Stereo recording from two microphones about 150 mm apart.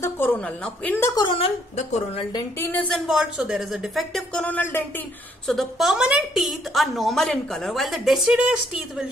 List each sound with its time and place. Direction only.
0.0 s speech: 10° left (ahead or behind)
1.1 s speech: 35° left (ahead or behind)
1.8 s a woman's voice: 50° left (ahead or behind)
2.6 s speech: 10° left (ahead or behind)
3.1 s a woman's voice: 5° right (ahead or behind); by 5.0 s 10° left (ahead or behind)
5.5 s a woman's voice: centre (ahead or behind)